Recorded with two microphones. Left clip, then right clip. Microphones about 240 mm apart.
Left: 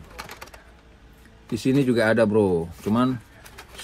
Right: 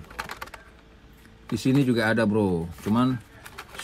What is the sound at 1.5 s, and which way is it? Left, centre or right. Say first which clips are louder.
A man's voice: left 2 dB; right.